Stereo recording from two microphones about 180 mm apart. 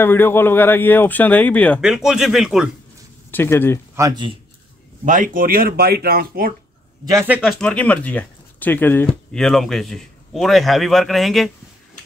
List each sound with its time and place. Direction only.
0.0 s speech: 10° left (ahead or behind)
1.8 s speech: 5° right (ahead or behind)
3.3 s speech: 10° left (ahead or behind)
3.9 s speech: 20° right (ahead or behind)
5.0 s speech: 45° right (ahead or behind)
7.1 s speech: 10° right (ahead or behind)
7.6 s speech: 5° left (ahead or behind)